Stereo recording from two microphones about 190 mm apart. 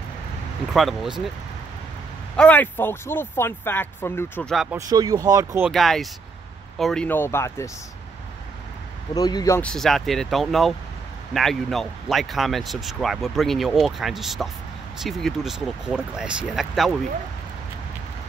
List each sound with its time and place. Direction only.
0.7 s speech: centre (ahead or behind)
2.3 s speech: 5° left (ahead or behind)
4.7 s speech: 20° right (ahead or behind)
5.7 s speech: centre (ahead or behind)
9.1 s speech: 20° left (ahead or behind)
9.6 s speech: 5° left (ahead or behind)